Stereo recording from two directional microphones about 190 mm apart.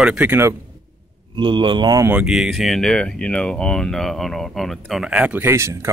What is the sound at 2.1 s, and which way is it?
Speech, 5° right (ahead or behind).